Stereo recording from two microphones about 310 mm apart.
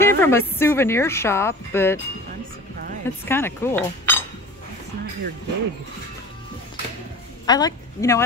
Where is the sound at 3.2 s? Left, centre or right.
Centre.